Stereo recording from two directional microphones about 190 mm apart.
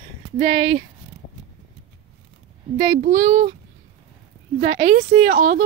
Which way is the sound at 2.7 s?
45° right (ahead or behind).